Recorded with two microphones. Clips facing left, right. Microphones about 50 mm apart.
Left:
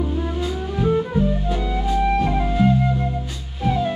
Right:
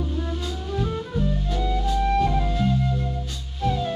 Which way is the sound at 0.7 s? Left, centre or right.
Left.